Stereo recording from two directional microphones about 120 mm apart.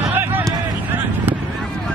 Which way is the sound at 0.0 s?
15° right (ahead or behind).